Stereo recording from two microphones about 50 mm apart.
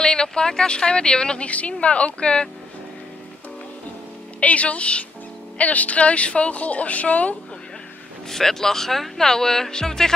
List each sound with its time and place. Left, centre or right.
0.0 s a woman's voice: centre
4.4 s a woman's voice: left
8.3 s a woman's voice: centre